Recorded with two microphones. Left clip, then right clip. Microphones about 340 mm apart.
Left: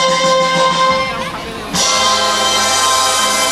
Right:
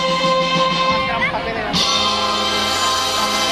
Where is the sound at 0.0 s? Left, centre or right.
Left.